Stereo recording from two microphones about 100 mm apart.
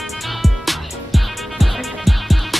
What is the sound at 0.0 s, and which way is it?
Music, centre (ahead or behind).